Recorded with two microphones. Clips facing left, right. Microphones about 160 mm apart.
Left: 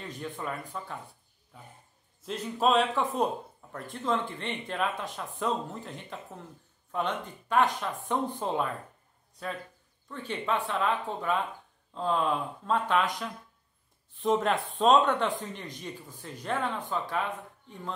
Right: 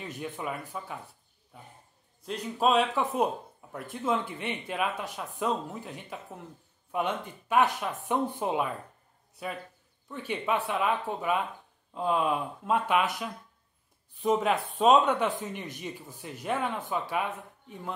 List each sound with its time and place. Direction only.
0.0 s speech: 10° right (ahead or behind)
2.2 s speech: centre (ahead or behind)
10.0 s speech: 10° right (ahead or behind)